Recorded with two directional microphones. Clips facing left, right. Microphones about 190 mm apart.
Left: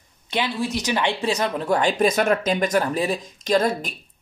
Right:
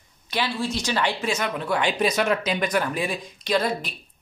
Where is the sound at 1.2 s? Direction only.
35° left (ahead or behind).